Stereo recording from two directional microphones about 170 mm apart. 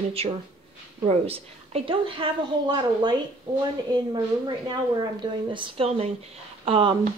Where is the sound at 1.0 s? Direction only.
35° right (ahead or behind).